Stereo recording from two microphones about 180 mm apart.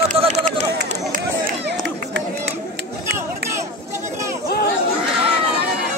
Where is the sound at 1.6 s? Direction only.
70° right (ahead or behind).